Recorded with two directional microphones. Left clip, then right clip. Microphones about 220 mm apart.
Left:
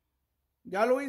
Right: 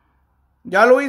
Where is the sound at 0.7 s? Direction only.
5° left (ahead or behind).